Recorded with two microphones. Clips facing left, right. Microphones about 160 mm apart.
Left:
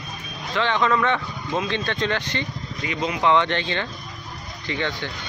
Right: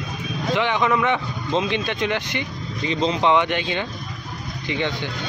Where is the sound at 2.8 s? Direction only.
25° right (ahead or behind).